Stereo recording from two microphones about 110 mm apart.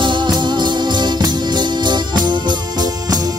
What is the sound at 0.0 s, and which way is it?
Music, 45° right (ahead or behind).